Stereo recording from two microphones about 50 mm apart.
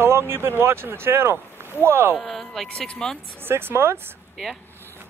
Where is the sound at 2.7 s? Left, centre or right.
Centre.